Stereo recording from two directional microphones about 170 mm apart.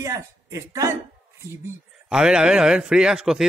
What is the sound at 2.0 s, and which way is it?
Speech, 5° right (ahead or behind).